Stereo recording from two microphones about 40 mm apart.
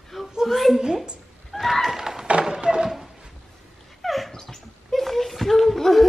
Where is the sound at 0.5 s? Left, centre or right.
Centre.